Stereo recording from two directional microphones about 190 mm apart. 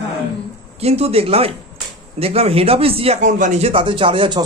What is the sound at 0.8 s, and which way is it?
Speech, 35° right (ahead or behind).